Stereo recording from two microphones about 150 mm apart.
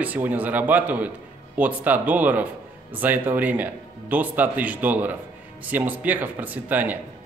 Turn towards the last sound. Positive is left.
turn(degrees=-10)  # may be behind; listen again after turning